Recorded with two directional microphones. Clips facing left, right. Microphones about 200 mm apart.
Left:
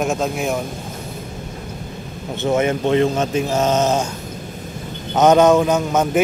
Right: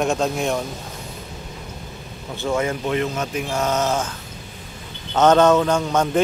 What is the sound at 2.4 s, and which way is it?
Speech, 20° left (ahead or behind).